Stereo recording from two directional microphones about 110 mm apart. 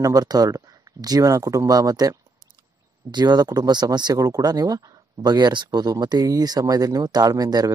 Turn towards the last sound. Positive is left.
turn(degrees=-35)  # may be behind; listen again after turning